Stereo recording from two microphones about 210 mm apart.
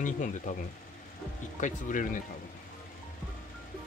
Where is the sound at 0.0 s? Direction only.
35° left (ahead or behind).